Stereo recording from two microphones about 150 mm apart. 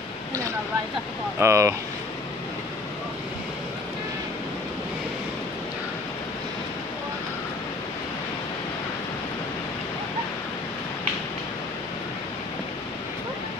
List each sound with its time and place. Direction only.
1.4 s speech: 20° right (ahead or behind)